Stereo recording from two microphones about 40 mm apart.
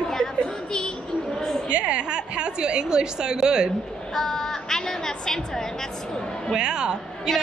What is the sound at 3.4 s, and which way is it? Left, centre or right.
Speech, centre.